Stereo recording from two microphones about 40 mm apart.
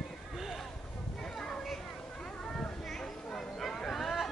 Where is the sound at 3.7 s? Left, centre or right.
Centre.